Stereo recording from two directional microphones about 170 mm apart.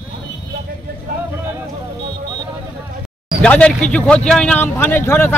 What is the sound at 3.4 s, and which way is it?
Speech, 5° left (ahead or behind).